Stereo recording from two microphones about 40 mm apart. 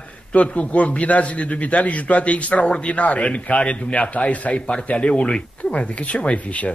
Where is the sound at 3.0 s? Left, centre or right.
Left.